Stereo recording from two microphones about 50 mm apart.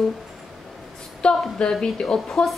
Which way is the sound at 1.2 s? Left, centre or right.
Centre.